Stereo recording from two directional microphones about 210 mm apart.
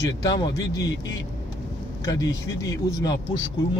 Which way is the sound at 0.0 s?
20° left (ahead or behind).